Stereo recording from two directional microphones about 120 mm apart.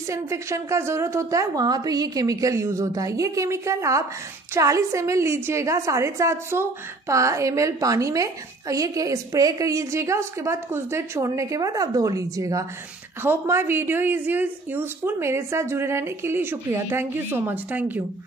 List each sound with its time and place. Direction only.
0.1 s a woman's voice: 25° right (ahead or behind)